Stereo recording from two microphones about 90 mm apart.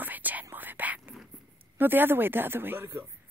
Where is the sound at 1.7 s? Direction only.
20° right (ahead or behind).